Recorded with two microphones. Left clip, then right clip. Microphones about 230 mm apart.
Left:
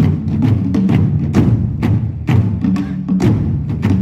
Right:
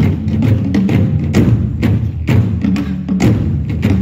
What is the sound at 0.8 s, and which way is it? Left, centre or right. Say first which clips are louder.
Music: right 1 dB; left.